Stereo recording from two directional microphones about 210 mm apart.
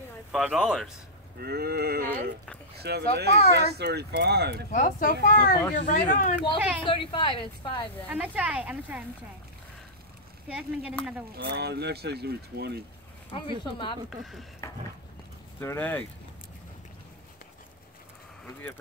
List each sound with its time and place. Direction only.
0.3 s speech: centre (ahead or behind)
1.4 s speech: 50° right (ahead or behind)
4.6 s speech: 40° left (ahead or behind)
6.8 s a woman's voice: 25° left (ahead or behind)
8.1 s speech: 5° right (ahead or behind)
10.5 s speech: 5° right (ahead or behind)
11.3 s speech: 50° right (ahead or behind)
13.3 s a woman's voice: 25° left (ahead or behind)
14.1 s speech: centre (ahead or behind)
15.6 s speech: 10° left (ahead or behind)